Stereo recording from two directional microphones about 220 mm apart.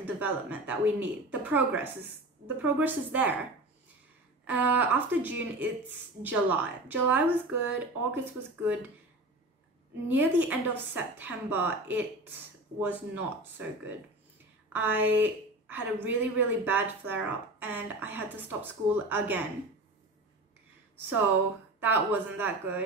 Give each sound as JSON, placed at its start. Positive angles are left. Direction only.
{"t": 0.0, "sound": "a woman's voice", "side_deg": -10}
{"t": 4.5, "sound": "a woman's voice", "side_deg": -5}
{"t": 10.0, "sound": "a woman's voice", "side_deg": -10}
{"t": 21.7, "sound": "a woman's voice", "side_deg": -10}